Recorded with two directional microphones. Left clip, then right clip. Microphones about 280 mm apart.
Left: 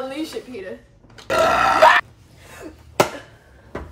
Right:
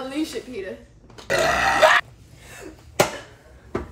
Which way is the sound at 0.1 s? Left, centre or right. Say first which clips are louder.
Right 1 dB; centre.